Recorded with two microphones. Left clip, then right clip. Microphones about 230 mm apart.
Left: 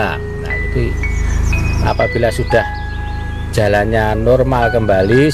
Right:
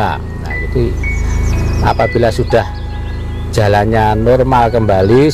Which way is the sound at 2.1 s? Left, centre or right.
Centre.